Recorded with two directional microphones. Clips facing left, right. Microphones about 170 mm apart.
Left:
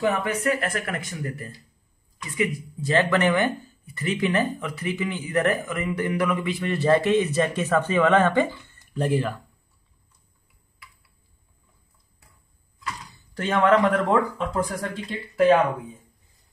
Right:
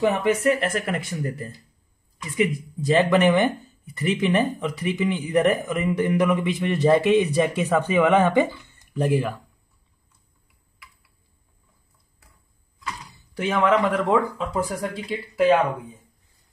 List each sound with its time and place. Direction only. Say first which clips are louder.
0.0 s speech: right 4 dB; 25° right (ahead or behind)
2.8 s speech: right 3 dB; 20° right (ahead or behind)
13.3 s speech: left 1 dB; 5° right (ahead or behind)